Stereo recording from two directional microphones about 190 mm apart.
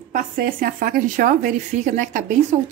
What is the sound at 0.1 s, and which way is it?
Speech, 50° right (ahead or behind).